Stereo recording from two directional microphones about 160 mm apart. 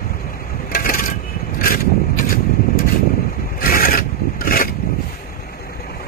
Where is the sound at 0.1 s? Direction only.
60° left (ahead or behind).